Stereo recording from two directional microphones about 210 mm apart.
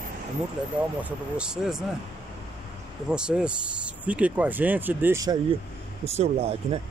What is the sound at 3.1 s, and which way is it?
Speech, 5° right (ahead or behind).